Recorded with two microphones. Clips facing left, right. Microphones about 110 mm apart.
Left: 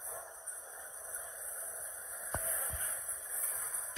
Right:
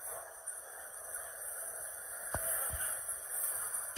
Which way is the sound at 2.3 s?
Centre (ahead or behind).